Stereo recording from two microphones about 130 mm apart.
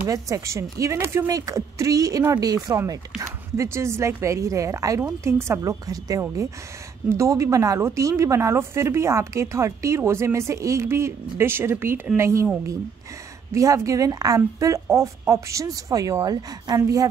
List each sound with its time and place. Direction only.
0.0 s a woman's voice: 25° right (ahead or behind)
13.5 s a woman's voice: 25° right (ahead or behind)